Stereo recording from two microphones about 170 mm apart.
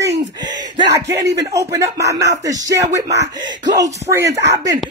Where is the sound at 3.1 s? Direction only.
90° right.